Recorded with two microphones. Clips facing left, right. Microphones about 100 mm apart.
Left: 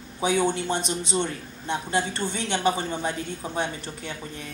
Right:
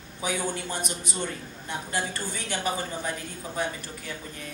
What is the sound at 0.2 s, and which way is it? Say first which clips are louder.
A man's voice: left 7 dB; 25° left (ahead or behind).